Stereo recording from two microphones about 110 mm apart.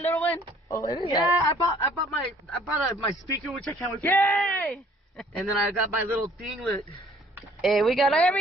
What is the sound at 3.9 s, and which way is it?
Speech, 25° left (ahead or behind).